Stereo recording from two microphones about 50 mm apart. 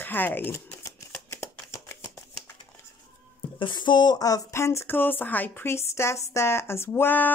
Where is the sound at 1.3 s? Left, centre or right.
Left.